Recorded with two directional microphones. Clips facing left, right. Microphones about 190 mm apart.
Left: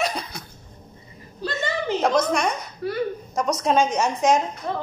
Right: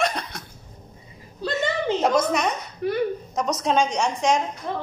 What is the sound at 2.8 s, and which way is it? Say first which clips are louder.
Speech: right 3 dB; 20° right (ahead or behind).